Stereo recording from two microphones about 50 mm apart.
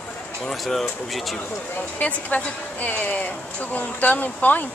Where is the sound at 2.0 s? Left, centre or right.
Left.